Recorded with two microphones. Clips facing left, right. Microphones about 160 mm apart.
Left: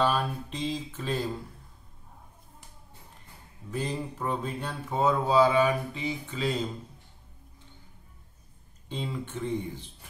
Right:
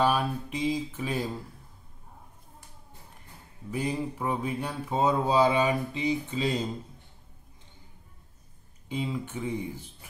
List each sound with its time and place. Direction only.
0.0 s mantra: 10° right (ahead or behind)
3.7 s mantra: 10° right (ahead or behind)
8.8 s mantra: 10° right (ahead or behind)